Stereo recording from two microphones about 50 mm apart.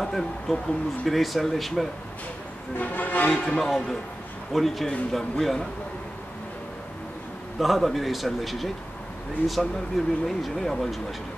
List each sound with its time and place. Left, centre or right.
0.0 s speech: centre
2.8 s music: left
3.3 s speech: centre
7.5 s speech: centre